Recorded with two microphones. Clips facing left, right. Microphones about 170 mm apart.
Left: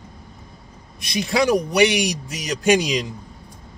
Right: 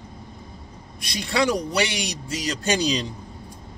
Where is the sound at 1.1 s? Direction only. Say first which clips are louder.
Left 4 dB; 20° left (ahead or behind).